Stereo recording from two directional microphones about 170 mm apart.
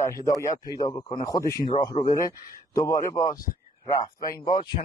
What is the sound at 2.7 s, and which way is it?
A man's voice, 20° left (ahead or behind).